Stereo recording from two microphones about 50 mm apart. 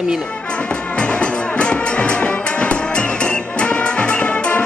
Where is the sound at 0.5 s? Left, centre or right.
Left.